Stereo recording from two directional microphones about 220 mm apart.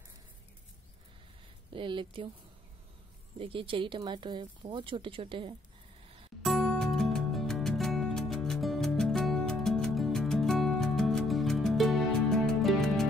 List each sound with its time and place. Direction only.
1.7 s speech: 20° right (ahead or behind)
3.3 s speech: 25° right (ahead or behind)
6.4 s music: centre (ahead or behind)